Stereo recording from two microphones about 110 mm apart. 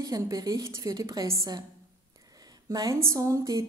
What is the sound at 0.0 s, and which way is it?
A woman's voice, 35° right (ahead or behind).